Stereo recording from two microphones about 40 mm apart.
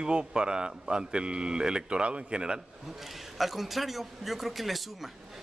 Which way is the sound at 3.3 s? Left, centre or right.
Centre.